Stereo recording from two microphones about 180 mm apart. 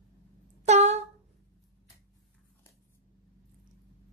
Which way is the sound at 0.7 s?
35° right (ahead or behind).